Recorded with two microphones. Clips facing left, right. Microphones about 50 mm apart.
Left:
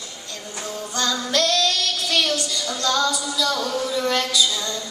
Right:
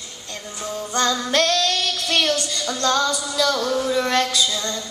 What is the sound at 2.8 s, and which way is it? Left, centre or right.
Music, right.